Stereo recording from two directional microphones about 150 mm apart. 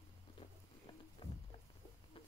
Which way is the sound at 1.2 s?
40° left (ahead or behind).